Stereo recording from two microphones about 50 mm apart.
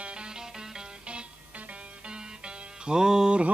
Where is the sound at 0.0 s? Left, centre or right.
Centre.